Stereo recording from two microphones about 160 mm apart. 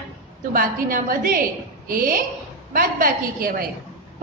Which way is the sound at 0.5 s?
60° right (ahead or behind).